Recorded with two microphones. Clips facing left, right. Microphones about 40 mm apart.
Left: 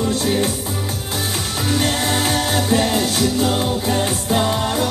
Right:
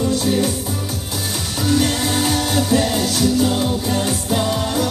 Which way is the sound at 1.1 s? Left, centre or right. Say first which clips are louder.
Left 2 dB; left.